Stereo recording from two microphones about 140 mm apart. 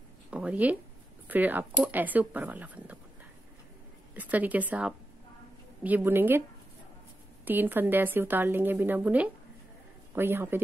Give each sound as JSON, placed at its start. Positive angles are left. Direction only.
{"t": 0.3, "sound": "a sound", "side_deg": -10}
{"t": 1.2, "sound": "a woman's voice", "side_deg": -10}
{"t": 4.1, "sound": "a woman's voice", "side_deg": -10}
{"t": 7.4, "sound": "a woman's voice", "side_deg": -15}